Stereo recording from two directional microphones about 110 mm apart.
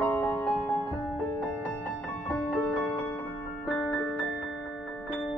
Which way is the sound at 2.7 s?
15° left (ahead or behind).